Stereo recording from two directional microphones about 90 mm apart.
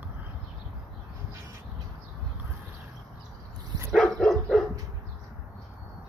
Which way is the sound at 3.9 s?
10° left (ahead or behind).